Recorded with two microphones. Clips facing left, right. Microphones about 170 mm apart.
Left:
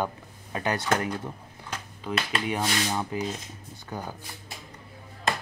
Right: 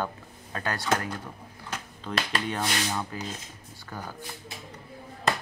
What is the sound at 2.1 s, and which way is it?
Speech, 10° left (ahead or behind).